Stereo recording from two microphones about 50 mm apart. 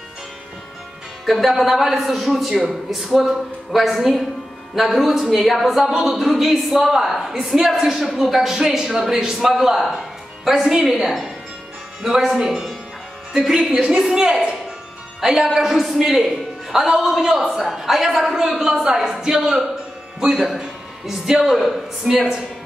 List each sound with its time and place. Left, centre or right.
1.2 s a woman's voice: centre
22.0 s a woman's voice: centre